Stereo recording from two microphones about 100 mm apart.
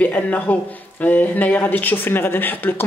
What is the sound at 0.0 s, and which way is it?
Speech, 15° left (ahead or behind).